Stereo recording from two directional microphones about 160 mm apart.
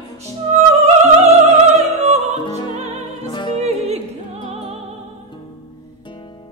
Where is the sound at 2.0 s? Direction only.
45° right (ahead or behind).